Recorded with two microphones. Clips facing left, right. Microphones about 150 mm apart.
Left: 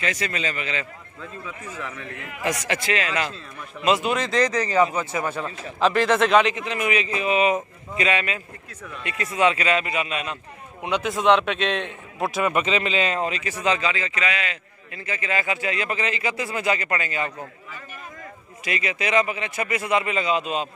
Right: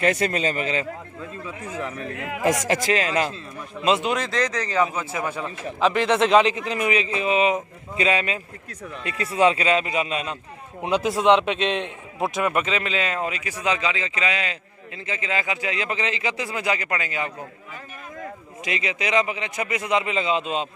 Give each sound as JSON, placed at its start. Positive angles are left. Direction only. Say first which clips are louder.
{"t": 0.0, "sound": "a man's voice", "louder": "right 6 dB", "side_deg": -50}
{"t": 2.4, "sound": "a man's voice", "louder": "right 4 dB", "side_deg": -45}
{"t": 4.3, "sound": "a man's voice", "louder": "left 3 dB", "side_deg": 0}
{"t": 6.2, "sound": "a man's voice", "louder": "right 1 dB", "side_deg": -30}
{"t": 11.2, "sound": "a man's voice", "louder": "even", "side_deg": -20}
{"t": 12.2, "sound": "speech", "louder": "even", "side_deg": 0}
{"t": 15.0, "sound": "speech", "louder": "even", "side_deg": -20}
{"t": 18.6, "sound": "a man's voice", "louder": "even", "side_deg": -20}